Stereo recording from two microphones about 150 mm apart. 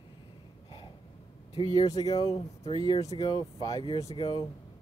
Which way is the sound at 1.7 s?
25° left (ahead or behind).